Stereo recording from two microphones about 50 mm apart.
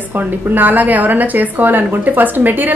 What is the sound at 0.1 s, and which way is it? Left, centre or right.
A woman's voice, right.